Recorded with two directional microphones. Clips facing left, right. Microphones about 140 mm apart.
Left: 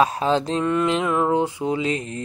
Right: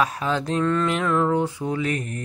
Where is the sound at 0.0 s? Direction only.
25° left (ahead or behind).